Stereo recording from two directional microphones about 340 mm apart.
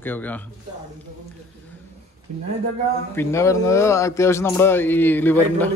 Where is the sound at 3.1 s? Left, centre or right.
Centre.